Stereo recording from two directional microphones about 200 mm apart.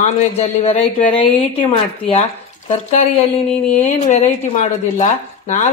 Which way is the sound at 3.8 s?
30° left (ahead or behind).